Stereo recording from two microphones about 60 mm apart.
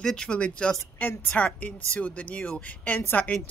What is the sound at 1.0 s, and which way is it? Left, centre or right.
Speech, left.